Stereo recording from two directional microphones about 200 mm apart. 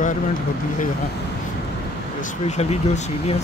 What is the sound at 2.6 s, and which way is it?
Speech, 30° left (ahead or behind).